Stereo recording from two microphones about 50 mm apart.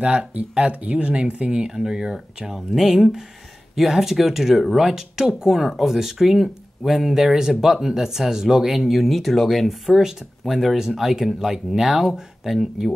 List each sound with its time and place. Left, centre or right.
0.0 s speech: right
1.7 s speech: centre